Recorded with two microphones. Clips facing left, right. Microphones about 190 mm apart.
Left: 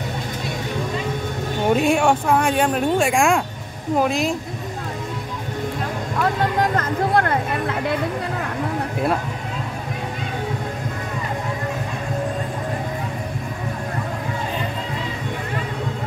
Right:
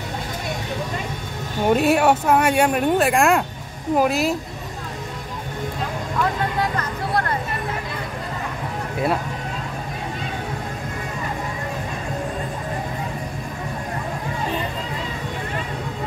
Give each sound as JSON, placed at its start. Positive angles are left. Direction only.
{"t": 1.7, "sound": "speech", "side_deg": -5}
{"t": 6.6, "sound": "music", "side_deg": 50}